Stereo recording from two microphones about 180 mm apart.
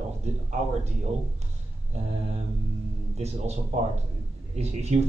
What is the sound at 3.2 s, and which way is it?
Speech, 35° right (ahead or behind).